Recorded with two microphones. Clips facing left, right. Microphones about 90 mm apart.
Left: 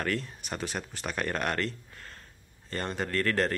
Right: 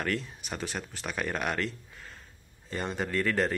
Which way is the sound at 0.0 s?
Centre (ahead or behind).